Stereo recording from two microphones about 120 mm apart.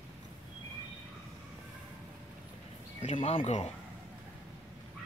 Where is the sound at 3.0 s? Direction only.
55° left (ahead or behind).